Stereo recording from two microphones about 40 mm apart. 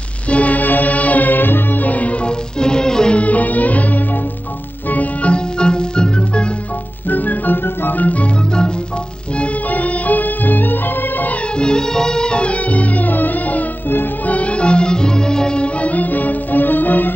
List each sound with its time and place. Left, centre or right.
0.3 s music: left; by 3.2 s centre
3.2 s music: left
5.3 s music: left
7.1 s organ: left
8.0 s music: left
9.4 s music: left
11.5 s music: left